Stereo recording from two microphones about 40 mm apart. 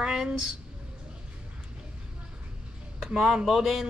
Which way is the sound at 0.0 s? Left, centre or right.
Centre.